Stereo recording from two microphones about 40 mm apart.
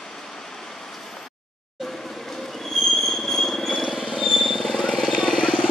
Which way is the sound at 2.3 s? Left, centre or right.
Centre.